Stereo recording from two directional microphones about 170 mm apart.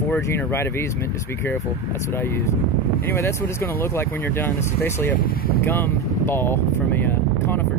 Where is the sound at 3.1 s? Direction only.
15° left (ahead or behind).